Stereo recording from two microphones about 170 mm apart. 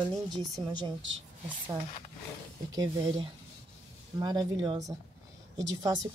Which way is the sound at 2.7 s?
25° right (ahead or behind).